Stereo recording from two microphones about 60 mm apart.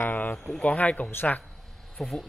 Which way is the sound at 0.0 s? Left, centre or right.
Left.